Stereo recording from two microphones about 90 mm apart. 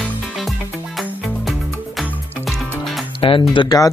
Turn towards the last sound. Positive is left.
turn(degrees=40)  # may be behind; listen again after turning